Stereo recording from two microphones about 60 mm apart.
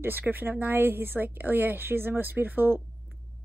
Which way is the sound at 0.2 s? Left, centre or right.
Right.